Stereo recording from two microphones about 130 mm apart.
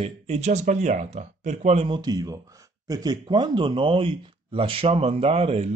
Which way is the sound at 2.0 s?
30° right (ahead or behind).